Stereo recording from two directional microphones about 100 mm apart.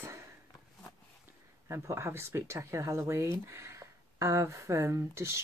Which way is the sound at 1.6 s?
30° right (ahead or behind).